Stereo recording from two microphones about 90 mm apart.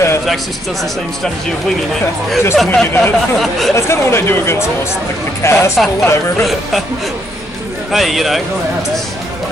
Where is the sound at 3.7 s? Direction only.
30° left (ahead or behind).